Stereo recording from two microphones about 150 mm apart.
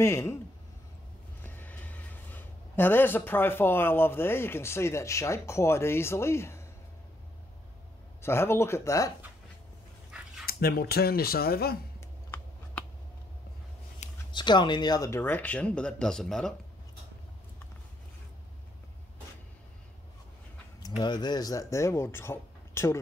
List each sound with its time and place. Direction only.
0.0 s a man's voice: 20° left (ahead or behind)
1.4 s speech: 15° left (ahead or behind)
8.2 s speech: 15° left (ahead or behind)
10.4 s speech: 90° left
14.3 s speech: 30° left (ahead or behind); by 16.5 s 5° left (ahead or behind)
21.0 s a man's voice: 30° left (ahead or behind)